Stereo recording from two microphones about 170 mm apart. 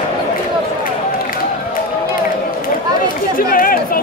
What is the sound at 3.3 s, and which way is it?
Chatter, 55° left (ahead or behind).